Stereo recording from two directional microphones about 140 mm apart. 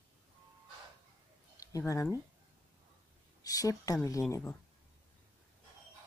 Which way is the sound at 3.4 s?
25° left (ahead or behind).